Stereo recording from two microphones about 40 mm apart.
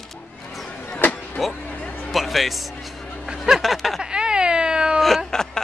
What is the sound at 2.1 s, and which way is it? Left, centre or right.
Music, centre.